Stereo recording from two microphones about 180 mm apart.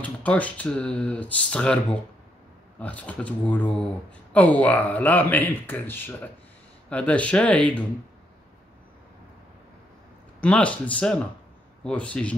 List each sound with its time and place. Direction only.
0.0 s speech: 10° left (ahead or behind)
10.4 s speech: 5° left (ahead or behind)